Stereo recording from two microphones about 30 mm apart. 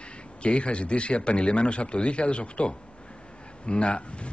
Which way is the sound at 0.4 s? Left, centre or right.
Left.